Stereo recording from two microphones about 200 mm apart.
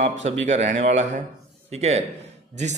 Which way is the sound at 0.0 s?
35° right (ahead or behind).